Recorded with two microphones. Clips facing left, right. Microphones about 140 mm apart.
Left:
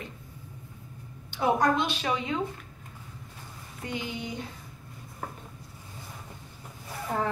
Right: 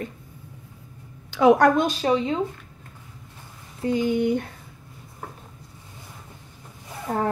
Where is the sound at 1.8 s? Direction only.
40° right (ahead or behind).